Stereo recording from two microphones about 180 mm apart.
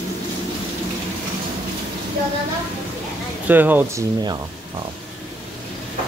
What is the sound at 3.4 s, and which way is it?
Speech, 10° right (ahead or behind).